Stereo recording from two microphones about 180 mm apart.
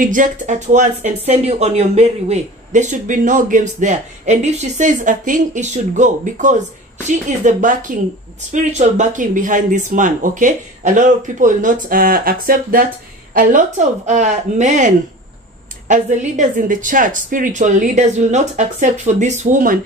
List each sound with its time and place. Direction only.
0.0 s speech: 45° right (ahead or behind)